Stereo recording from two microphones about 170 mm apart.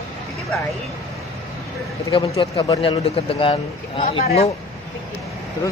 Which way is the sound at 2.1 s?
30° left (ahead or behind).